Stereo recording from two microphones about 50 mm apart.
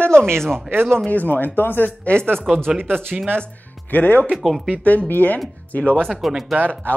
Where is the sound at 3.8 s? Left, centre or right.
Left.